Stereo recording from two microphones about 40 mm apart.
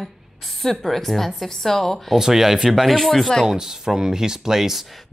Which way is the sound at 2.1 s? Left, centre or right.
Centre.